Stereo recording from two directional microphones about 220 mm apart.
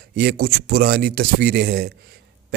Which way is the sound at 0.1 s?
45° right (ahead or behind).